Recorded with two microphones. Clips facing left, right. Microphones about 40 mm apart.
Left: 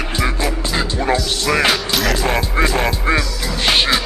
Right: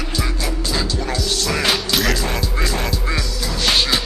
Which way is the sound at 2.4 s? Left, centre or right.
Left.